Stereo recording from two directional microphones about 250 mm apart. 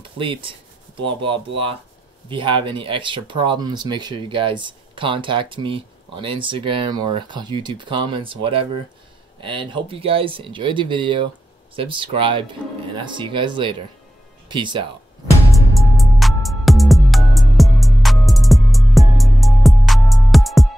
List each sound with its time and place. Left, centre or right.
0.2 s speech: right
15.7 s music: centre